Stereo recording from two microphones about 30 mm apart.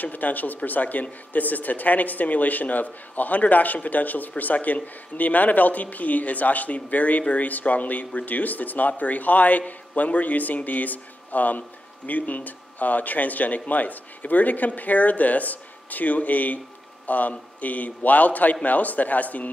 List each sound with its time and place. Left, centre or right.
0.0 s speech: left
8.3 s speech: left